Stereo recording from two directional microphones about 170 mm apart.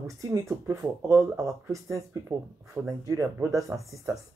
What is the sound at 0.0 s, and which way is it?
Speech, 20° right (ahead or behind).